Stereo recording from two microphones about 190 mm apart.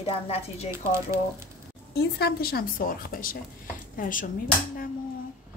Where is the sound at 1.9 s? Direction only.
55° left (ahead or behind).